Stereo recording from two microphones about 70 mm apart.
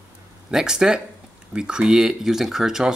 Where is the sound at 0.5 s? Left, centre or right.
Centre.